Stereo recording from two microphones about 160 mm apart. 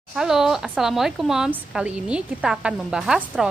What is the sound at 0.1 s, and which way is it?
Speech, 5° right (ahead or behind).